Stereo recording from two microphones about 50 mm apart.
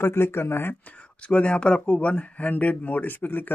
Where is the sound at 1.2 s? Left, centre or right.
Left.